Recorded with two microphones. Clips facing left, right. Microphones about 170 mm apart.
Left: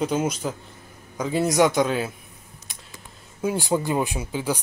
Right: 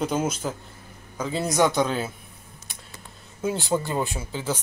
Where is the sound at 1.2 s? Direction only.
15° left (ahead or behind).